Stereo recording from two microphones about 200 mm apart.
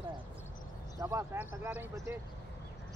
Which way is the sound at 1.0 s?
15° right (ahead or behind).